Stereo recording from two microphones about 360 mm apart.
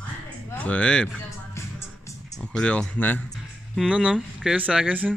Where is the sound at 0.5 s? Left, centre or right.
Centre.